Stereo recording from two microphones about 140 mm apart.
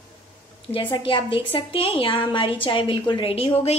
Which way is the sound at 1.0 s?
35° left (ahead or behind).